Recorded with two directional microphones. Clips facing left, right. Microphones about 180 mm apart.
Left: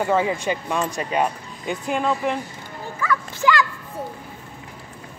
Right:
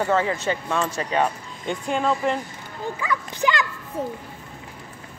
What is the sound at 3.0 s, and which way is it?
Speech, 15° right (ahead or behind).